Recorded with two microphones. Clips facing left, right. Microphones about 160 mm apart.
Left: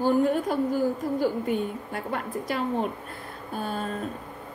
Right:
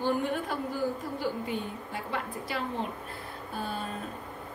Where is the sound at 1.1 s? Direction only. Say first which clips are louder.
Left 7 dB; 50° left (ahead or behind).